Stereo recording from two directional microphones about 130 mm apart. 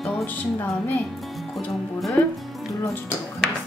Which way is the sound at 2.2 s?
20° left (ahead or behind).